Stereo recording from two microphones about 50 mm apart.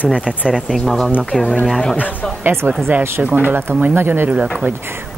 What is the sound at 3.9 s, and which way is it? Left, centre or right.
Speech, right.